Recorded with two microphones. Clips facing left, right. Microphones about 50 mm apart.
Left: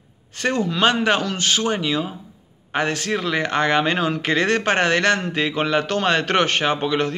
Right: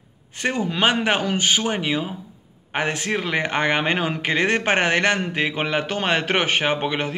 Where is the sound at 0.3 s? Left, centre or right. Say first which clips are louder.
Left 2 dB; centre.